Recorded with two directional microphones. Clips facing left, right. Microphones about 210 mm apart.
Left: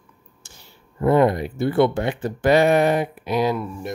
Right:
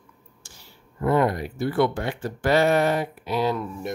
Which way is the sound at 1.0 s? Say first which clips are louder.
Left 4 dB; 25° left (ahead or behind).